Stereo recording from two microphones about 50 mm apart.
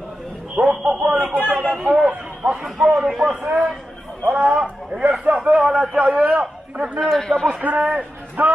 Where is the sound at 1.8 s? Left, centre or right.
Right.